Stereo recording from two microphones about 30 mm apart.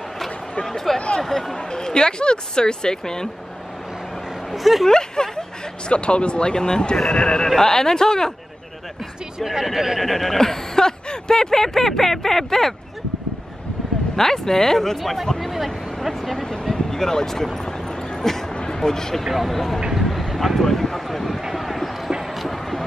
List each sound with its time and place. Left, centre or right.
0.9 s speech: left
4.8 s speech: left
5.9 s speech: left
7.4 s speech: centre
9.4 s speech: centre
9.9 s speech: centre
14.1 s speech: centre
15.4 s speech: centre
16.3 s speech: centre
19.2 s speech: centre
19.9 s a sound: centre